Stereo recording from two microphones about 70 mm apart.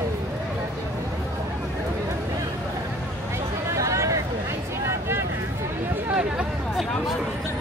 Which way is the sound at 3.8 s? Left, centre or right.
Right.